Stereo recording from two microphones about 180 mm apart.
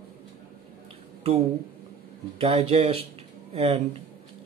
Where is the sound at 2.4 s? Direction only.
35° right (ahead or behind).